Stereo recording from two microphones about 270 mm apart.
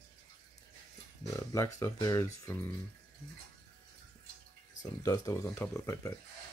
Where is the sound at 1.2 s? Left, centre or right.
Centre.